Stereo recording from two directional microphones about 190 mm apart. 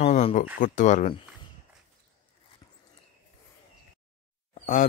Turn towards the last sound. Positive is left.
turn(degrees=45)  # may be behind; listen again after turning